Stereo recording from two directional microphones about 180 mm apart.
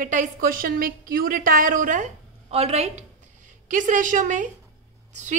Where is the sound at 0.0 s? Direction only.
45° right (ahead or behind).